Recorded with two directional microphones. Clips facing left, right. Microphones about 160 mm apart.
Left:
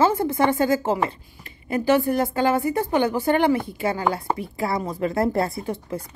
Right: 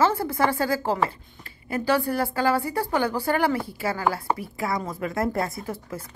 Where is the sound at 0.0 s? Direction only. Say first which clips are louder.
Left 3 dB; 25° left (ahead or behind).